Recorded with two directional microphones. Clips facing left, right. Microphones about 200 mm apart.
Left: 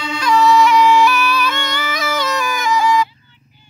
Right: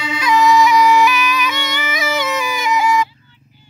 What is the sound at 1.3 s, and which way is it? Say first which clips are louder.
Music: left 1 dB; 20° right (ahead or behind).